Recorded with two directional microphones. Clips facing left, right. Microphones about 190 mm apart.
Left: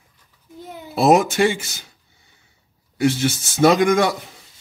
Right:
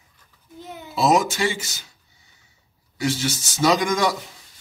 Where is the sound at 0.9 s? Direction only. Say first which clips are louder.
Left 4 dB; 55° left (ahead or behind).